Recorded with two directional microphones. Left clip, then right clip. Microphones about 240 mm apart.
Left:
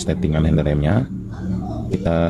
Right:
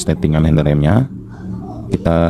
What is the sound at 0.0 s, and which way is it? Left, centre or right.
Speech, right.